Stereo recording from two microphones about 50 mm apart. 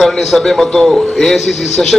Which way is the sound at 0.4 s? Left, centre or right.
Centre.